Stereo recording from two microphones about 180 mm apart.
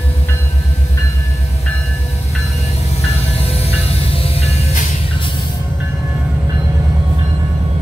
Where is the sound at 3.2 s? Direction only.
35° left (ahead or behind).